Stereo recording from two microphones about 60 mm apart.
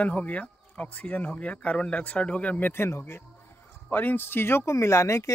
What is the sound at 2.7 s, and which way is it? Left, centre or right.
Speech, left.